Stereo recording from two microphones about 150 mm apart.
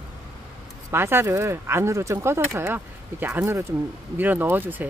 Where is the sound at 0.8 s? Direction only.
15° right (ahead or behind).